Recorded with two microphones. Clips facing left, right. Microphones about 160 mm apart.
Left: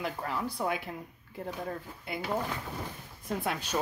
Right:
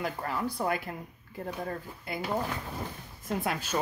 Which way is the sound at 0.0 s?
Centre (ahead or behind).